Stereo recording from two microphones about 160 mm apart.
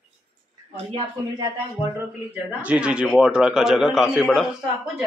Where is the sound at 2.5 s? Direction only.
10° right (ahead or behind).